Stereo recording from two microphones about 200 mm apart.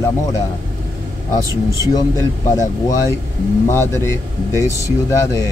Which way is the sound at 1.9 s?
15° left (ahead or behind).